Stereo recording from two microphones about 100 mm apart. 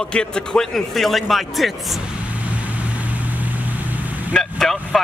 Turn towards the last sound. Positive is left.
turn(degrees=5)  # may be behind; listen again after turning